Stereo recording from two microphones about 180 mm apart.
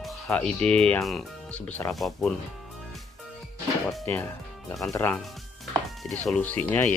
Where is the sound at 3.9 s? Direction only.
10° left (ahead or behind).